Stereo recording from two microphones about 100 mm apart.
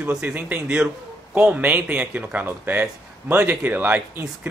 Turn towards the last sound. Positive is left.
turn(degrees=-15)  # may be behind; listen again after turning